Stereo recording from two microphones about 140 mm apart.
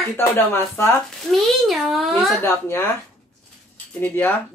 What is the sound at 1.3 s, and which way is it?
A child's voice, centre (ahead or behind).